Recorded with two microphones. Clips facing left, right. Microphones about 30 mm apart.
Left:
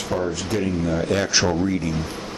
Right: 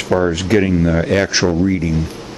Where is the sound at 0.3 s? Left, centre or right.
Right.